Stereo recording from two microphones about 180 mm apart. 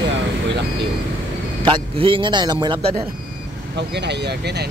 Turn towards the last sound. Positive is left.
turn(degrees=-65)  # may be behind; listen again after turning